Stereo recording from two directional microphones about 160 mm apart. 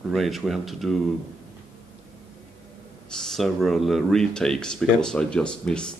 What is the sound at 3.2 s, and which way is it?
Speech, centre (ahead or behind).